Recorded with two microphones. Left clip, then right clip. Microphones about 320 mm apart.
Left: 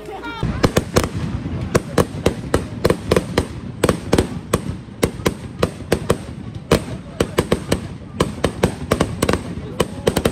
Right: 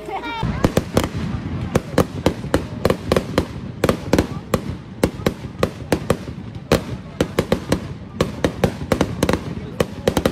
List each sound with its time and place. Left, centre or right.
0.1 s fireworks: centre
0.6 s fireworks: centre
2.5 s fireworks: centre
5.0 s a sound: centre
6.7 s fireworks: centre